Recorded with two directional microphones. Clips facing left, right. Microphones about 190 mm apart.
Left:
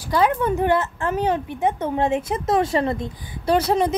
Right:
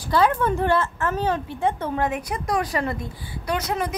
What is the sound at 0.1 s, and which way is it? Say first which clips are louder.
A woman's voice: left 1 dB; 15° left (ahead or behind).